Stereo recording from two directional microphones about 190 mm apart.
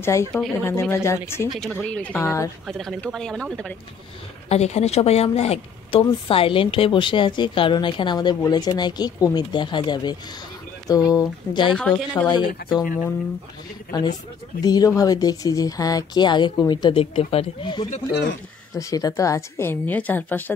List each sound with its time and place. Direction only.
0.0 s a woman's voice: 15° left (ahead or behind)
1.5 s a woman's voice: centre (ahead or behind)
2.6 s speech: centre (ahead or behind)
4.5 s speech: 35° left (ahead or behind)
11.7 s a woman's voice: 5° left (ahead or behind)
12.3 s speech: 25° left (ahead or behind)
13.9 s a woman's voice: 20° left (ahead or behind)